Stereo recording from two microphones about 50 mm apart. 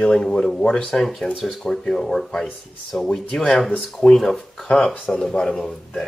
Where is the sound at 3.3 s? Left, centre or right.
Centre.